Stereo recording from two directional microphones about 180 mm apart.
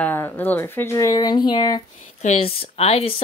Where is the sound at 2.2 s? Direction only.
35° left (ahead or behind).